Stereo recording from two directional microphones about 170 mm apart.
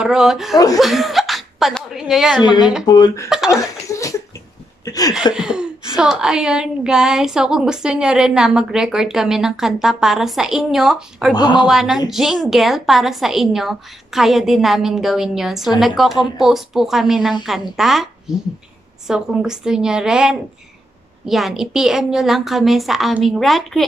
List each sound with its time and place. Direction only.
0.0 s a woman's voice: 5° right (ahead or behind)
2.3 s speech: 25° left (ahead or behind)
3.3 s speech: 5° right (ahead or behind)
4.8 s a sound: 20° left (ahead or behind)
5.3 s a woman's voice: 5° right (ahead or behind)
11.3 s speech: 25° left (ahead or behind)
11.6 s a woman's voice: centre (ahead or behind)